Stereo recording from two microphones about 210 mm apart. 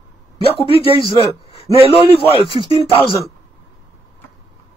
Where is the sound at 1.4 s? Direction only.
25° left (ahead or behind).